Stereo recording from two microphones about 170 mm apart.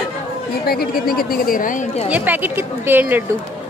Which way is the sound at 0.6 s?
65° left (ahead or behind).